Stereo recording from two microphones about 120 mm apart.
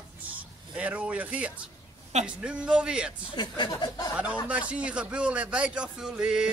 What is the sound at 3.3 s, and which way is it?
Speech, 35° left (ahead or behind).